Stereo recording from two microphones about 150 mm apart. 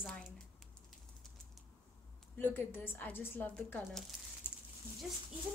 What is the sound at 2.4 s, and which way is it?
A woman's voice, 15° left (ahead or behind).